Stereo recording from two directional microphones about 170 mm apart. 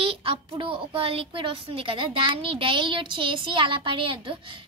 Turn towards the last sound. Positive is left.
turn(degrees=-30)  # may be behind; listen again after turning